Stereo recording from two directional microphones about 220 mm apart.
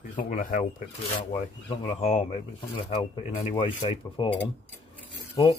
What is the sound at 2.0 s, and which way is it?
Speech, 30° left (ahead or behind).